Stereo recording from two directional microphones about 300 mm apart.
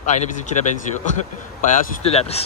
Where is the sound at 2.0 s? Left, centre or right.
Centre.